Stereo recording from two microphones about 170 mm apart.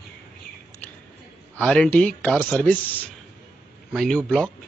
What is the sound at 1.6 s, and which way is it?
Speech, 5° left (ahead or behind).